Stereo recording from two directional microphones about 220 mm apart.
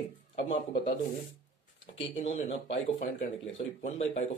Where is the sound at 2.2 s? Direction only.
25° left (ahead or behind).